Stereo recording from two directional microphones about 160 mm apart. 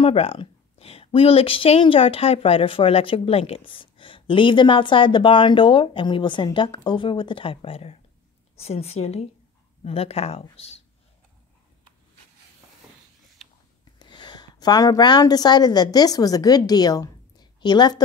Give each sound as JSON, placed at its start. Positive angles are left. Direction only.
{"t": 0.0, "sound": "speech", "side_deg": 35}
{"t": 13.9, "sound": "a woman's voice", "side_deg": 25}